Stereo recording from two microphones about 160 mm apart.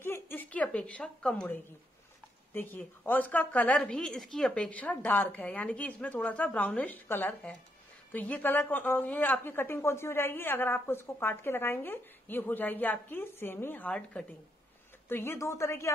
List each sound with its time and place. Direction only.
0.0 s a woman's voice: 15° left (ahead or behind)